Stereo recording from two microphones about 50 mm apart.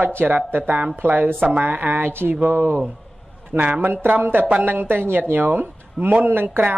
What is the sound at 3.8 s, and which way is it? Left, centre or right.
Speech, right.